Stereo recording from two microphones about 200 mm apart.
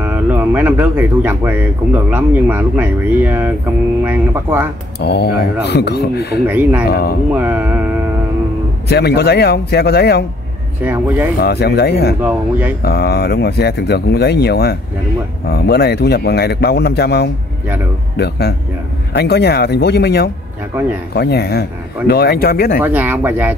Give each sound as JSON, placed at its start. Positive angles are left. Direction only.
{"t": 0.0, "sound": "speech", "side_deg": -10}
{"t": 5.0, "sound": "a man's voice", "side_deg": 55}
{"t": 6.4, "sound": "speech", "side_deg": -10}
{"t": 6.9, "sound": "speech", "side_deg": 50}
{"t": 7.3, "sound": "speech", "side_deg": -10}
{"t": 8.8, "sound": "speech", "side_deg": 55}
{"t": 10.8, "sound": "speech", "side_deg": -10}
{"t": 11.3, "sound": "speech", "side_deg": 55}
{"t": 12.2, "sound": "speech", "side_deg": -10}
{"t": 12.8, "sound": "a man's voice", "side_deg": 55}
{"t": 22.8, "sound": "speech", "side_deg": -10}